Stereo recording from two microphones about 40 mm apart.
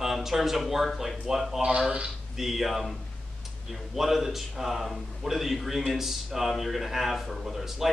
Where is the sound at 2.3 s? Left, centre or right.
Centre.